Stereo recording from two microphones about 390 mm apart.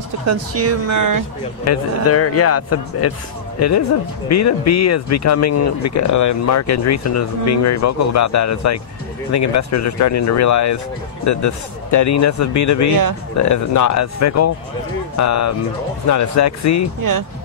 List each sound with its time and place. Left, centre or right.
0.3 s speech: right
1.6 s speech: left